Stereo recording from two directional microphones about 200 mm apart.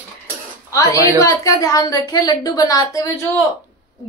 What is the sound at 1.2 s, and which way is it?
A woman's voice, 15° left (ahead or behind).